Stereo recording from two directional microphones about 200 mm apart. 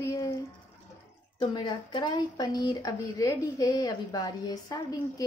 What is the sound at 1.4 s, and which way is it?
Speech, 20° left (ahead or behind).